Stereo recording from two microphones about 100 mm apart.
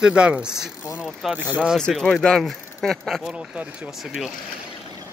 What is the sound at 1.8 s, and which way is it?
Speech, 5° left (ahead or behind).